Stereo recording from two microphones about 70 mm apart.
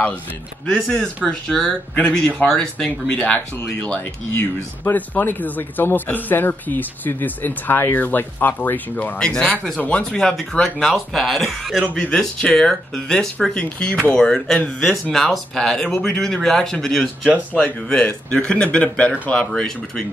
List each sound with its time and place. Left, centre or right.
0.7 s speech: centre; by 9.1 s left
9.2 s speech: centre
10.2 s speech: centre
11.9 s speech: centre